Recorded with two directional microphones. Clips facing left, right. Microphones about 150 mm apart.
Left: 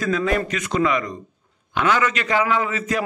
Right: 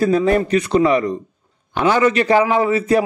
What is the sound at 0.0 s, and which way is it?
A man's voice, 35° right (ahead or behind).